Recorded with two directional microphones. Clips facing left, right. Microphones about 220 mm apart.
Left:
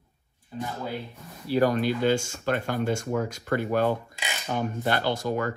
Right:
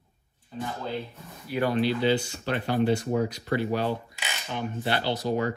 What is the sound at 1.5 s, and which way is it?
Speech, 45° left (ahead or behind).